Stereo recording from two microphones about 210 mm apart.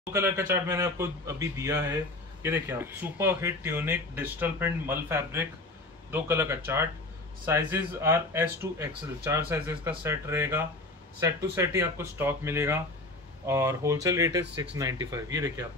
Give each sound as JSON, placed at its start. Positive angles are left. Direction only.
{"t": 0.1, "sound": "speech", "side_deg": -10}